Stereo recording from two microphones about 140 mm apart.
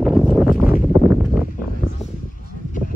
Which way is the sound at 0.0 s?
Centre (ahead or behind).